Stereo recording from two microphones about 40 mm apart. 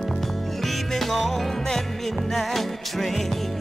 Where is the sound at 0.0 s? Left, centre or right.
Centre.